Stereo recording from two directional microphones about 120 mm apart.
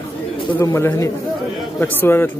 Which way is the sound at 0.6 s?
25° left (ahead or behind).